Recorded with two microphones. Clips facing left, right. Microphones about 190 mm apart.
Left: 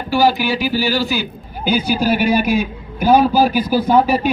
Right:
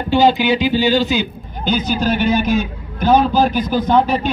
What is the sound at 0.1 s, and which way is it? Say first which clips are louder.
Speech: right 2 dB; 20° right (ahead or behind).